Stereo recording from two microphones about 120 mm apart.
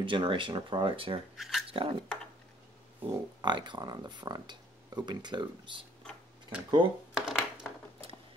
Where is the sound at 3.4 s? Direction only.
40° right (ahead or behind).